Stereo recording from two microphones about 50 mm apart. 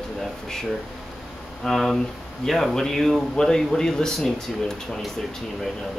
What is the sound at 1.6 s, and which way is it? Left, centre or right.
Speech, centre.